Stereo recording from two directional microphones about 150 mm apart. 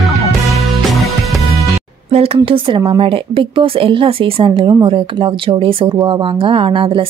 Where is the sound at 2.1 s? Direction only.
40° right (ahead or behind).